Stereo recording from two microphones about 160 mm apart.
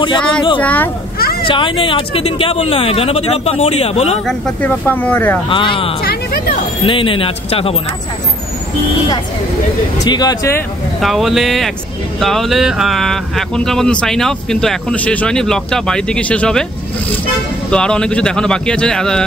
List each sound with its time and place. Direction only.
0.6 s speech: 10° left (ahead or behind)
1.1 s a sound: 70° left (ahead or behind)
1.4 s speech: 30° left (ahead or behind)
4.3 s speech: 5° left (ahead or behind)
5.5 s speech: 30° left (ahead or behind)
6.0 s speech: 70° left (ahead or behind)
6.8 s speech: 35° left (ahead or behind)
10.0 s speech: 25° left (ahead or behind)
11.0 s speech: centre (ahead or behind)
17.6 s speech: 5° left (ahead or behind)